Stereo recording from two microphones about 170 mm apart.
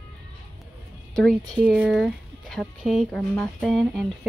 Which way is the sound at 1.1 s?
5° left (ahead or behind).